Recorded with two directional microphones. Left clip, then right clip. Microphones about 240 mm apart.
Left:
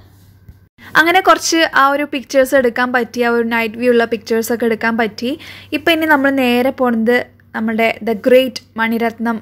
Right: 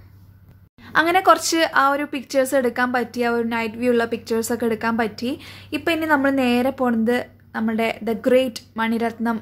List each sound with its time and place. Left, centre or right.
0.7 s a woman's voice: left